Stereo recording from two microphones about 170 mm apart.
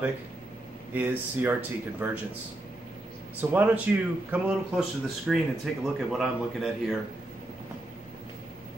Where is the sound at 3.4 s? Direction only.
10° right (ahead or behind).